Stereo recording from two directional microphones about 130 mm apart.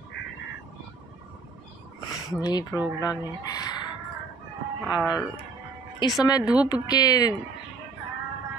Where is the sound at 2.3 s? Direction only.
30° left (ahead or behind).